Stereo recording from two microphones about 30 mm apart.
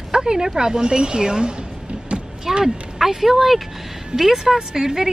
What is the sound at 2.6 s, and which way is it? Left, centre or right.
Speech, centre.